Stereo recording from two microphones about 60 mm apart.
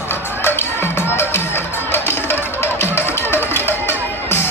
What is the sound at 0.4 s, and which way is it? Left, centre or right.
Music, left.